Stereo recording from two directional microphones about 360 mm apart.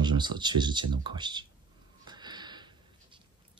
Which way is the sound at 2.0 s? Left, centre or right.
Centre.